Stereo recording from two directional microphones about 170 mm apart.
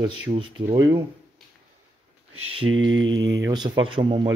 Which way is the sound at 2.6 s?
15° right (ahead or behind).